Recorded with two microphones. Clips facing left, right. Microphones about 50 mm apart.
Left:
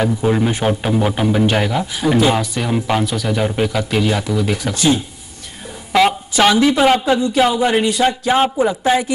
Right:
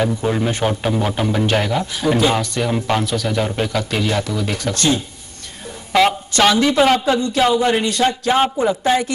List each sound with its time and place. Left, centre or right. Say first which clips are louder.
0.0 s speech: left 2 dB; centre